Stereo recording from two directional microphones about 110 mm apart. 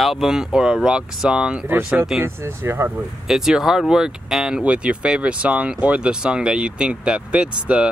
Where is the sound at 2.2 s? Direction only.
20° right (ahead or behind).